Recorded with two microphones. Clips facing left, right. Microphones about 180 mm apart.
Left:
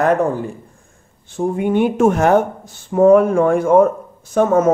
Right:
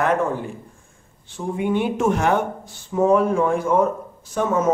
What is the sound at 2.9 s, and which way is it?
Speech, 55° left (ahead or behind).